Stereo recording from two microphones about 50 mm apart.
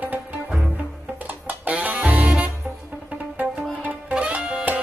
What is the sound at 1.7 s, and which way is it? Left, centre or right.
Music, right.